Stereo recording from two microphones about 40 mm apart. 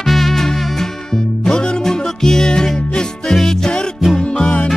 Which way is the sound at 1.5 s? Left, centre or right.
Centre.